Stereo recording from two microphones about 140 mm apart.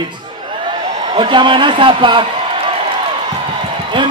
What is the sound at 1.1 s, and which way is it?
A man's voice, 35° right (ahead or behind).